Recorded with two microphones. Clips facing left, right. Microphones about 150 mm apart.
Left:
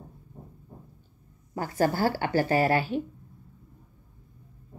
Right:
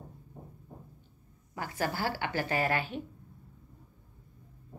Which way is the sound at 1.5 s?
40° left (ahead or behind).